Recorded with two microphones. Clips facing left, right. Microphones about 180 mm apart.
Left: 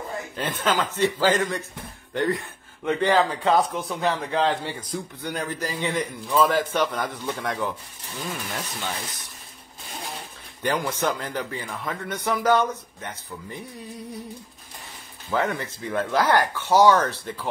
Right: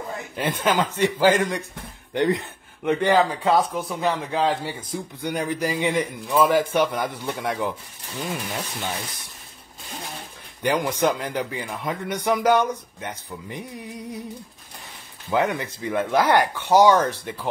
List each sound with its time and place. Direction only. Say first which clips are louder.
0.4 s a man's voice: right 3 dB; 15° right (ahead or behind)
10.6 s a man's voice: right 3 dB; 15° right (ahead or behind)
15.2 s a man's voice: right 3 dB; 15° right (ahead or behind)